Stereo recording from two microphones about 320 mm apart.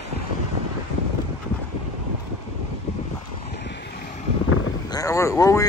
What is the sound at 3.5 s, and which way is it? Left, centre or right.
Vehicle, left.